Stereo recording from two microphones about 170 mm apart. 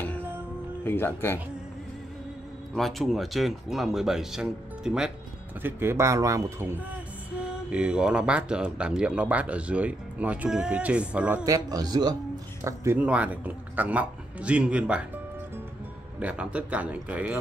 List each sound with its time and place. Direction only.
0.8 s speech: 15° left (ahead or behind)
2.7 s speech: centre (ahead or behind)
11.4 s a man's voice: 20° right (ahead or behind)
16.2 s speech: 5° right (ahead or behind)